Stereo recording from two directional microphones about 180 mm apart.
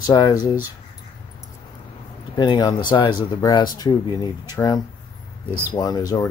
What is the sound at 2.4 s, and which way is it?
Speech, 20° left (ahead or behind).